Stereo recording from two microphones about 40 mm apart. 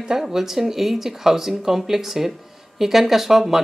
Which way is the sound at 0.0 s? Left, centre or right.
Centre.